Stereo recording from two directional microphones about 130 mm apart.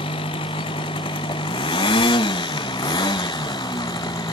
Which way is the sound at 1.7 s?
40° left (ahead or behind).